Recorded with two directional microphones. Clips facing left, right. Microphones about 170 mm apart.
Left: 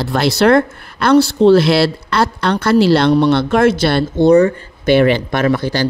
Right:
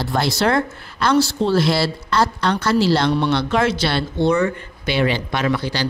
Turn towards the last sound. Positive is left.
turn(degrees=45)  # may be behind; listen again after turning